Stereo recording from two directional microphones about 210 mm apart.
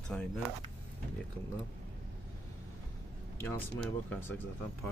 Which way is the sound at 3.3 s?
10° left (ahead or behind).